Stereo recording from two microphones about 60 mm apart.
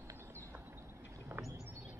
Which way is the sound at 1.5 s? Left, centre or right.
Right.